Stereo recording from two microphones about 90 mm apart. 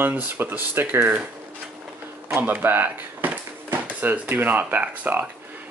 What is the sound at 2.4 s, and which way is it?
Speech, 20° right (ahead or behind).